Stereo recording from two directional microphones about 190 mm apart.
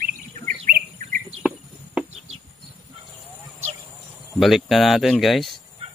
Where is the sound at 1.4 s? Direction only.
5° right (ahead or behind).